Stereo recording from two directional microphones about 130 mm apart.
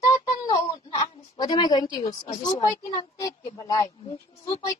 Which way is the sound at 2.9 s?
30° left (ahead or behind).